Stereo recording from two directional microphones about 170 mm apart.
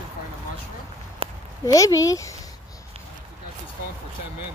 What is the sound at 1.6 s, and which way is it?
Speech, 20° left (ahead or behind).